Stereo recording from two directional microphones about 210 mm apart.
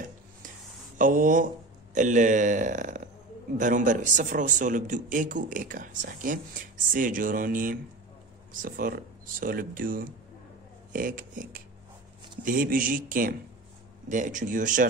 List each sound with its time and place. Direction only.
0.9 s a man's voice: 40° right (ahead or behind)